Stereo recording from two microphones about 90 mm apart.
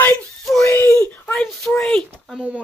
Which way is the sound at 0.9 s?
10° left (ahead or behind).